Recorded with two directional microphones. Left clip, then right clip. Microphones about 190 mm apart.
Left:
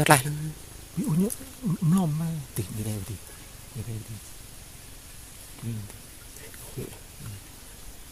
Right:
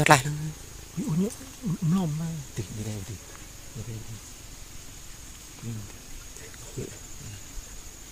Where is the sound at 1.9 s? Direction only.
50° left (ahead or behind).